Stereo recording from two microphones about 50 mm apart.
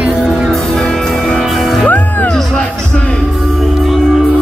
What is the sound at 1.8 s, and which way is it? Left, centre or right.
Music, left.